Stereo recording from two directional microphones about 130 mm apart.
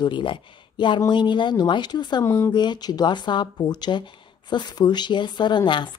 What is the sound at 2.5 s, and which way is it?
Speech, 35° left (ahead or behind).